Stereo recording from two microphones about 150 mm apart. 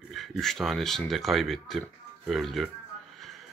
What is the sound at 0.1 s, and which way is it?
Speech, centre (ahead or behind).